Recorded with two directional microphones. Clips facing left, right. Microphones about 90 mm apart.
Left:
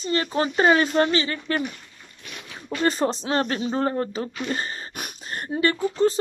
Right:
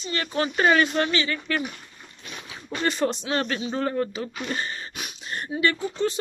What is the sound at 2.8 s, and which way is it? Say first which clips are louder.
Speech: left 2 dB; 35° left (ahead or behind).